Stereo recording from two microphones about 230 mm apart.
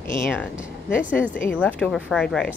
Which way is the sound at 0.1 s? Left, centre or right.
Centre.